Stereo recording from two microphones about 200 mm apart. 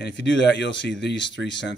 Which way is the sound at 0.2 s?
60° left (ahead or behind).